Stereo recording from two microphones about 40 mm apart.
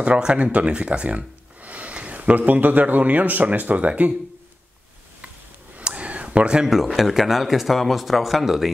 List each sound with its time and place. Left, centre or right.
0.0 s speech: right
5.9 s a sound: right
6.7 s speech: centre